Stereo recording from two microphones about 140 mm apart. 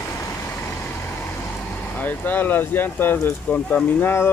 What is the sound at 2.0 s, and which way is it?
Speech, 15° left (ahead or behind).